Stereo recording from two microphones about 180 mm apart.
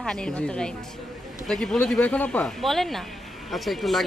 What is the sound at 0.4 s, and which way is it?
A woman's voice, 5° left (ahead or behind).